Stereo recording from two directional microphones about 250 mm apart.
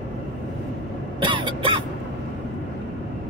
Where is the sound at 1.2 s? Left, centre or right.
Centre.